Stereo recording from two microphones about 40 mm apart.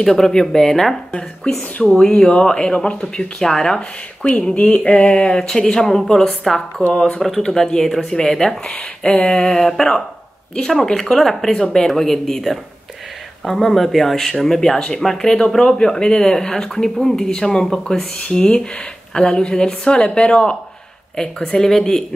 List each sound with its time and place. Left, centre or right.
0.0 s speech: centre
3.3 s speech: centre
4.6 s speech: left; by 6.6 s centre
6.9 s speech: left
7.2 s speech: centre
8.6 s speech: left
9.3 s speech: centre